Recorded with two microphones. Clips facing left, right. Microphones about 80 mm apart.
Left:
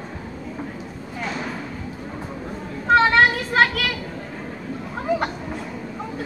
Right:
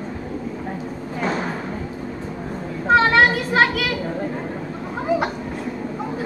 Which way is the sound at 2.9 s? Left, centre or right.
Centre.